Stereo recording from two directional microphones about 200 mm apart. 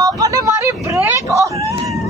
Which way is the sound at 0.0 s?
15° right (ahead or behind).